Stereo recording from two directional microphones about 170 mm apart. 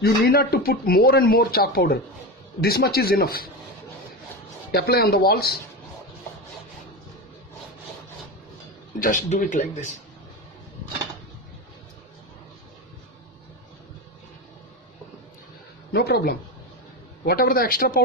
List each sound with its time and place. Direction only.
0.0 s speech: 65° left (ahead or behind)
4.7 s speech: 70° left (ahead or behind)
9.0 s speech: 50° left (ahead or behind)
15.9 s speech: 70° left (ahead or behind)